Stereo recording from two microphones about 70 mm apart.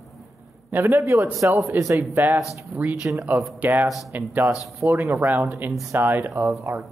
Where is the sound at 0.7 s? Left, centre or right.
Right.